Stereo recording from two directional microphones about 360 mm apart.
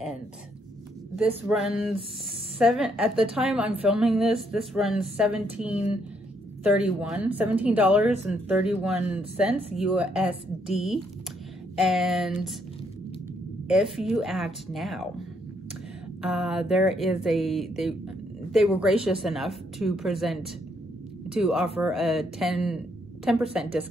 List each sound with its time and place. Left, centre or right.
1.5 s speech: centre
11.8 s speech: centre
13.7 s speech: centre